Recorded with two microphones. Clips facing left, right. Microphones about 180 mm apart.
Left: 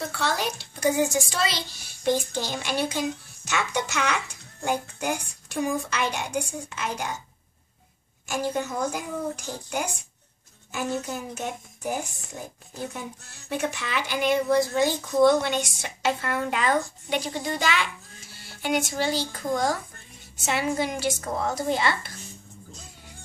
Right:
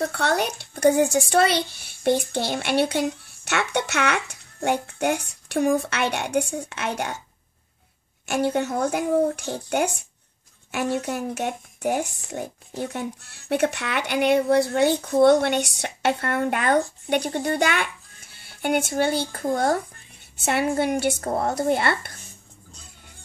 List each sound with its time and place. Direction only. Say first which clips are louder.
0.1 s a child's voice: right 4 dB; 60° right (ahead or behind)
8.3 s a child's voice: right 5 dB; 65° right (ahead or behind)